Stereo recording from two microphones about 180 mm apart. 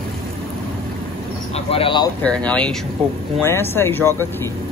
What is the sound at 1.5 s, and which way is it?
Vehicle, 30° left (ahead or behind).